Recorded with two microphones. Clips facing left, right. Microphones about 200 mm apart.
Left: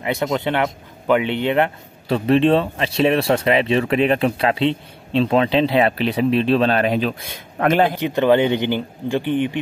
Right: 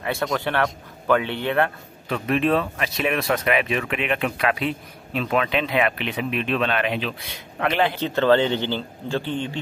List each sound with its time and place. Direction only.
0.0 s speech: 20° left (ahead or behind)
2.0 s speech: 30° left (ahead or behind)
7.9 s a man's voice: 15° left (ahead or behind)